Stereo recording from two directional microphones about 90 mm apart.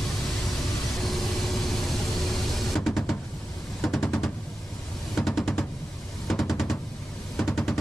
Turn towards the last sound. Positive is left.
turn(degrees=0)  # may be behind; listen again after turning